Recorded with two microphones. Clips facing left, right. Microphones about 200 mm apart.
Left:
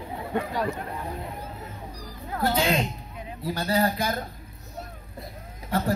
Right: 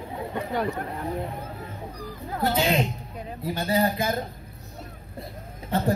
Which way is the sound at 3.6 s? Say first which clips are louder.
Right 1 dB; 20° right (ahead or behind).